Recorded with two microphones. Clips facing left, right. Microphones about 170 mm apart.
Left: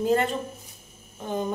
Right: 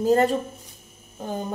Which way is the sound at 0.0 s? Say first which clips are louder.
Right 4 dB; 40° right (ahead or behind).